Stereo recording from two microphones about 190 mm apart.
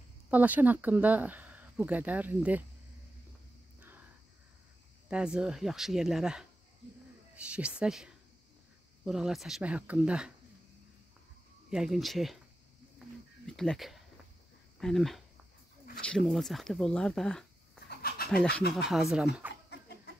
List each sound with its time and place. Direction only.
0.3 s speech: 10° right (ahead or behind)
5.0 s speech: 5° right (ahead or behind)
7.4 s speech: 5° right (ahead or behind)
11.7 s speech: centre (ahead or behind)
13.5 s speech: centre (ahead or behind)
17.8 s bird: 55° left (ahead or behind)
18.7 s speech: centre (ahead or behind)